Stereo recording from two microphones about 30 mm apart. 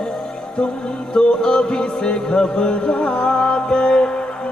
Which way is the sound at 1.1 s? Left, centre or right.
Left.